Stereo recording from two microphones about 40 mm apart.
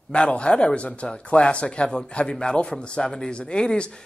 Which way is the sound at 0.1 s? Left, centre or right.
Left.